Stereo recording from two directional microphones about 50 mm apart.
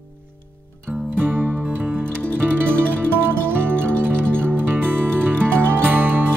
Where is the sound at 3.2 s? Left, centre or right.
Right.